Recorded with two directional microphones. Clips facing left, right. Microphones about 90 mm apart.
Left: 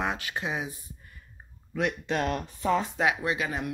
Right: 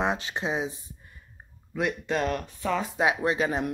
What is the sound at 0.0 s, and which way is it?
Speech, 25° right (ahead or behind).